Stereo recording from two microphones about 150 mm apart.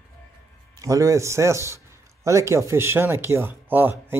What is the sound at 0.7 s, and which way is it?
Speech, 20° right (ahead or behind).